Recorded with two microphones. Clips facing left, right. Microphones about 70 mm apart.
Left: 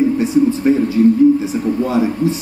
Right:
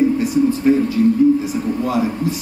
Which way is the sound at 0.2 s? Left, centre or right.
Left.